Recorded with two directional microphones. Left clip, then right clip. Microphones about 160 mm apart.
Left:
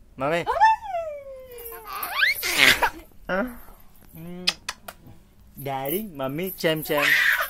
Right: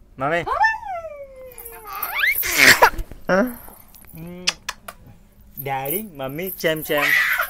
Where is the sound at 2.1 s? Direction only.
30° left (ahead or behind).